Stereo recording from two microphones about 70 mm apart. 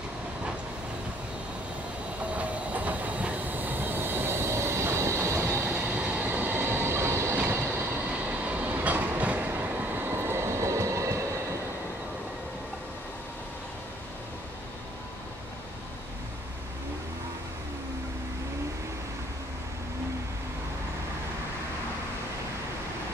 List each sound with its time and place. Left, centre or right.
2.3 s train: centre; by 5.7 s right
5.7 s train: right
6.2 s train: right
8.1 s train: centre; by 11.2 s right